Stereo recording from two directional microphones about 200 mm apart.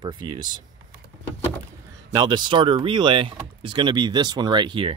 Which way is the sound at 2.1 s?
20° right (ahead or behind).